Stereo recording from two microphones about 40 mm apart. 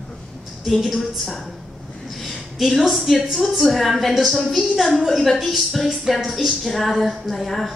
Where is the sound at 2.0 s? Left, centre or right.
Centre.